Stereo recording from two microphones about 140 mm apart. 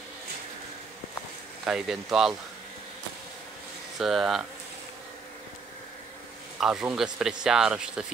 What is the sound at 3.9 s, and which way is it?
Speech, centre (ahead or behind).